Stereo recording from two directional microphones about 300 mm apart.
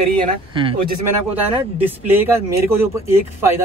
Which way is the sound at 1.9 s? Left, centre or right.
Centre.